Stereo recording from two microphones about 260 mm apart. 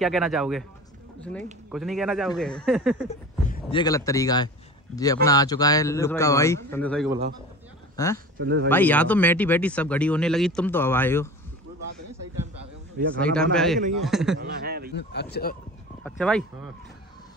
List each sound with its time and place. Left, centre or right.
0.0 s speech: centre
3.1 s a sound: left
3.7 s speech: centre
7.9 s a sound: centre
8.4 s a man's voice: right
8.6 s speech: centre
13.2 s speech: centre
14.4 s a man's voice: right
14.9 s speech: left
16.0 s speech: centre